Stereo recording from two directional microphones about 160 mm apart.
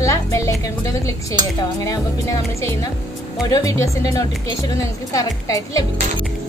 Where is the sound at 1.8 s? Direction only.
20° left (ahead or behind).